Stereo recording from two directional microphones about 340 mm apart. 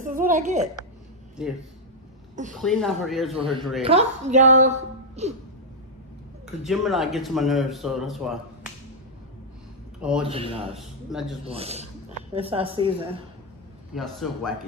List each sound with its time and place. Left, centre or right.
0.0 s a woman's voice: right
2.6 s speech: centre
3.3 s a man's voice: centre
6.4 s speech: centre
10.2 s a man's voice: centre
10.8 s speech: centre
11.4 s a man's voice: centre
13.9 s speech: centre